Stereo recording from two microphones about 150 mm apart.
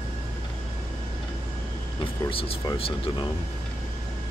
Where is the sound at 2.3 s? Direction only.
35° left (ahead or behind).